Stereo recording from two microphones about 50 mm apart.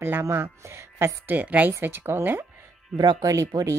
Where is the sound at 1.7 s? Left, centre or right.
Right.